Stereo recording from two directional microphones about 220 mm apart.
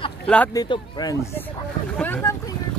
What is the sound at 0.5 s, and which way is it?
Speech, 20° left (ahead or behind).